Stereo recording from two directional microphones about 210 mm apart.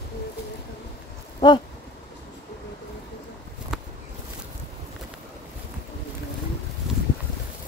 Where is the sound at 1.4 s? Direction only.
20° left (ahead or behind).